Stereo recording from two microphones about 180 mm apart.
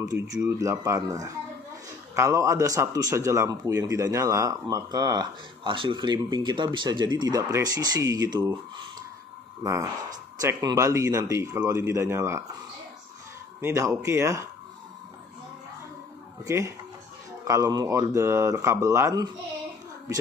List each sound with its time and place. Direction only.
0.0 s speech: 20° right (ahead or behind)
9.6 s speech: 15° right (ahead or behind)
13.6 s speech: 15° right (ahead or behind)
16.4 s speech: 15° right (ahead or behind)